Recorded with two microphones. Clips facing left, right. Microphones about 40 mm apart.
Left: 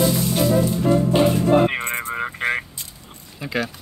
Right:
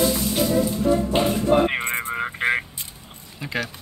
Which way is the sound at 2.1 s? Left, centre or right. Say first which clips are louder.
Right 1 dB; centre.